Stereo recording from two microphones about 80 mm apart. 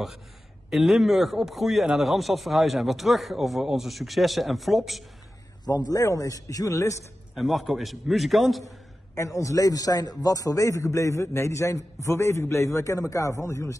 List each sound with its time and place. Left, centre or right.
0.7 s speech: centre
5.7 s a man's voice: left
7.3 s speech: centre
9.1 s a man's voice: left